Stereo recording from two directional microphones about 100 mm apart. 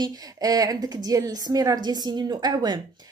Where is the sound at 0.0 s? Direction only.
40° right (ahead or behind).